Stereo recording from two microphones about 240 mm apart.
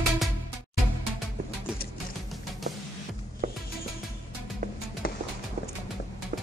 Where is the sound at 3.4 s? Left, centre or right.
Right.